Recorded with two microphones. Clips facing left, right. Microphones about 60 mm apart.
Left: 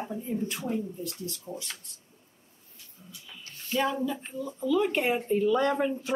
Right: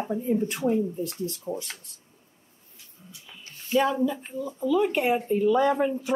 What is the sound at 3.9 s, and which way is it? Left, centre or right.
Speech, centre.